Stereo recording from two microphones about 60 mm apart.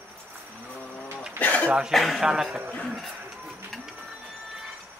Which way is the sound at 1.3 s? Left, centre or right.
Left.